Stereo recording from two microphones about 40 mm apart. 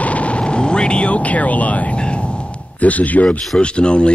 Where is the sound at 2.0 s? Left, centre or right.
Left.